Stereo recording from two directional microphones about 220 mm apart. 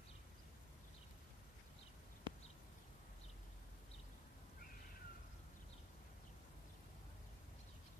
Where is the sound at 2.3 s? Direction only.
20° right (ahead or behind).